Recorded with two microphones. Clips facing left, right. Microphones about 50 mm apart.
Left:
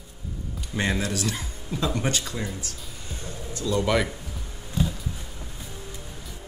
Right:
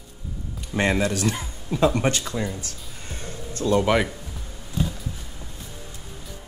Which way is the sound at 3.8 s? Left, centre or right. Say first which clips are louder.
Right 3 dB; centre.